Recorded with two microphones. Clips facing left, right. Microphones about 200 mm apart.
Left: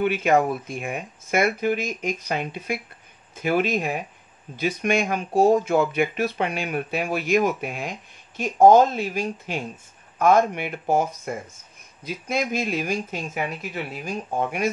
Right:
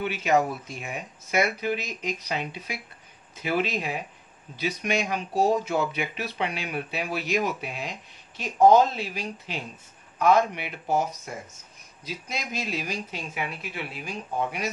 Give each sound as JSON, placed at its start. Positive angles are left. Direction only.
{"t": 0.0, "sound": "speech", "side_deg": 55}